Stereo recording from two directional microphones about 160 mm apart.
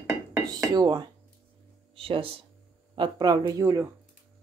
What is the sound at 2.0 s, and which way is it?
Speech, 35° right (ahead or behind).